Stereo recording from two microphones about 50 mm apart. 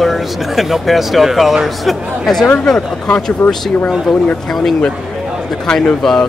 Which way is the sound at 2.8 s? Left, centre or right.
Centre.